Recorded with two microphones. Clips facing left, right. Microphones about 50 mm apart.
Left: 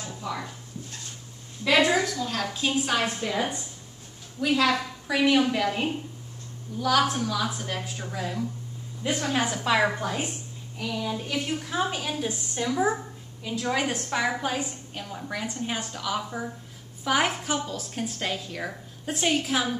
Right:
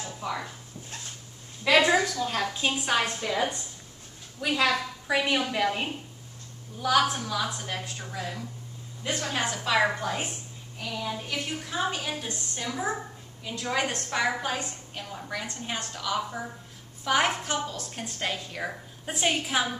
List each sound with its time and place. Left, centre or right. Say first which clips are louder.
0.2 s speech: even; centre
1.7 s a woman's voice: even; centre
2.4 s a woman's voice: left 1 dB; centre
3.1 s a woman's voice: even; centre